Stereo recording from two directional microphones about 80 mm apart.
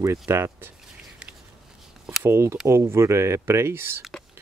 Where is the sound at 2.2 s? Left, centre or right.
Right.